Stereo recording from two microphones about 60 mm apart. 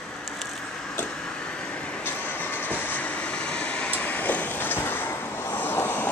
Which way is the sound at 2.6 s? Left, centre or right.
Left.